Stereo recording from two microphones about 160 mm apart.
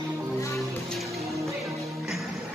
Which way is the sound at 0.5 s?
Centre (ahead or behind).